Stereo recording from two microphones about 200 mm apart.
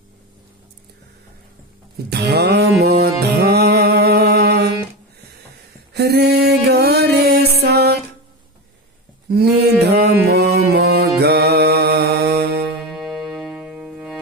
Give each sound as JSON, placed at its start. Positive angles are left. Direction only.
{"t": 2.0, "sound": "music", "side_deg": -55}
{"t": 5.9, "sound": "music", "side_deg": -55}
{"t": 9.3, "sound": "a sound", "side_deg": -55}
{"t": 10.3, "sound": "mantra", "side_deg": -50}
{"t": 12.9, "sound": "music", "side_deg": 0}